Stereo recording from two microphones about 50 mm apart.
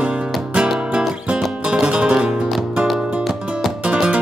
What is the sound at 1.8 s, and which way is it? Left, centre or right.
Music, right.